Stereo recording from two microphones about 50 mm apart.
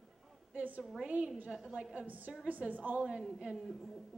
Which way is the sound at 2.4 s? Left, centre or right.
Right.